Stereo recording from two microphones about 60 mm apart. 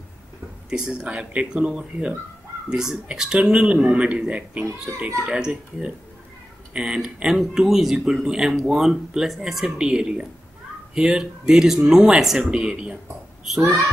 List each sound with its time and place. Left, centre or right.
0.7 s speech: centre
13.5 s a child's voice: centre